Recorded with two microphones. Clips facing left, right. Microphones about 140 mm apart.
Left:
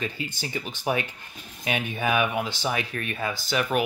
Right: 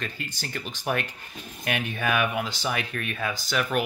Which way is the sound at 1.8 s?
10° left (ahead or behind).